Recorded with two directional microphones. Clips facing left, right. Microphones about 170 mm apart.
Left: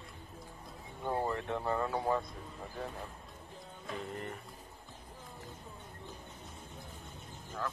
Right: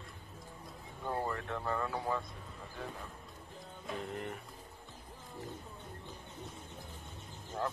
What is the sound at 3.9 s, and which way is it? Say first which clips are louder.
Music: right 1 dB; centre (ahead or behind).